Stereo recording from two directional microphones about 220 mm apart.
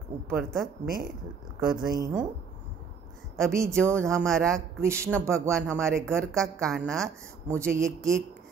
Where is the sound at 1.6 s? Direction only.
20° right (ahead or behind).